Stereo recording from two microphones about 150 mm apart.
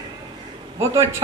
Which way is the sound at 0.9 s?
20° right (ahead or behind).